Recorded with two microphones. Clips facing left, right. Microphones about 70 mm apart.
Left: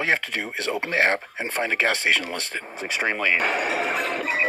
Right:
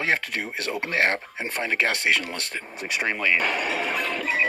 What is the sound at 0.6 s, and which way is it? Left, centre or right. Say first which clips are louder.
Speech: left 2 dB; left.